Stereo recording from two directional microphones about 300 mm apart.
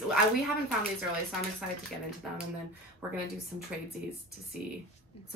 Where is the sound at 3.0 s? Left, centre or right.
Centre.